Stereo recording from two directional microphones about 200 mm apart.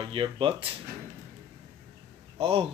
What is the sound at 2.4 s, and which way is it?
Speech, 25° right (ahead or behind).